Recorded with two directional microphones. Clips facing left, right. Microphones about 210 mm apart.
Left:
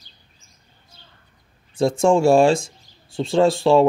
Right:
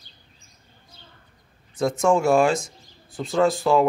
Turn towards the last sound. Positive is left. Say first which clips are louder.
# left 4 dB
turn(degrees=30)  # may be behind; listen again after turning